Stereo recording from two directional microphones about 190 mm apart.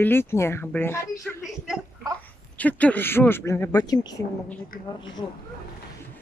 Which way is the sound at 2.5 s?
10° left (ahead or behind).